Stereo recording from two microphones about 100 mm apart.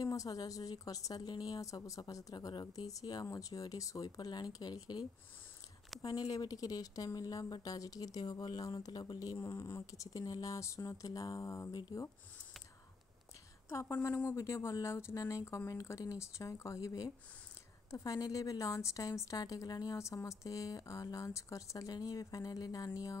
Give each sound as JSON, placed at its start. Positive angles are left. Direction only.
{"t": 0.0, "sound": "a woman's voice", "side_deg": 35}
{"t": 13.7, "sound": "a woman's voice", "side_deg": 25}